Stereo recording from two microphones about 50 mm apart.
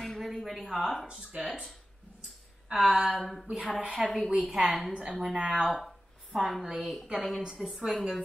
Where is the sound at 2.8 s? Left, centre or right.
Centre.